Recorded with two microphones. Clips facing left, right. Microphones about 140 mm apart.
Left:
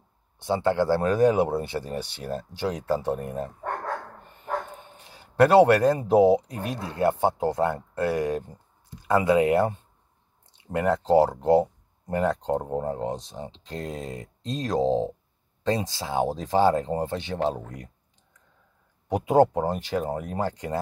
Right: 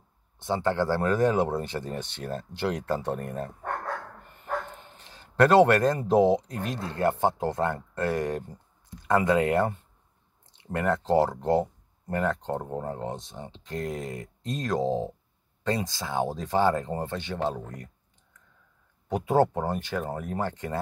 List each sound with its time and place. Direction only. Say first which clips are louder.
0.4 s speech: left 3 dB; 15° left (ahead or behind)
4.7 s speech: left 2 dB; 15° left (ahead or behind)
10.8 s speech: left 3 dB; 15° left (ahead or behind)
19.0 s speech: left 3 dB; 15° left (ahead or behind)